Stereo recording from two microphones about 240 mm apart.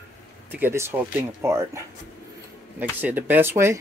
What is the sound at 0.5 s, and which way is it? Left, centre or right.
Speech, centre.